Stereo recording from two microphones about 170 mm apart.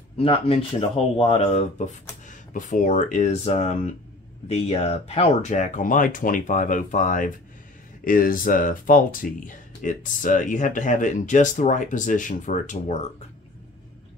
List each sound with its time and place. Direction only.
0.2 s speech: 35° left (ahead or behind)